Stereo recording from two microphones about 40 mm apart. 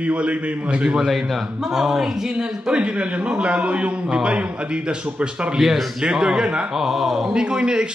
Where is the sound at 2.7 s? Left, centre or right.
Right.